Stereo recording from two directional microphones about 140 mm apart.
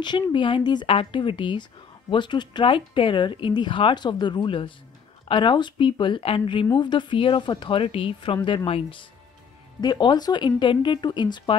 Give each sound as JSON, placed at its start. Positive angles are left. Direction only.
{"t": 0.0, "sound": "speech", "side_deg": 35}